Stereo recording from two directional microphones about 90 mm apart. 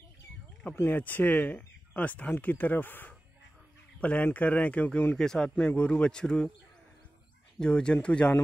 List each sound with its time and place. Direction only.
0.7 s a man's voice: 20° left (ahead or behind)
7.5 s a man's voice: 10° left (ahead or behind)